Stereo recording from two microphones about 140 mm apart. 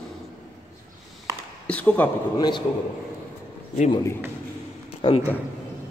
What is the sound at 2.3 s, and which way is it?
Speech, 30° left (ahead or behind).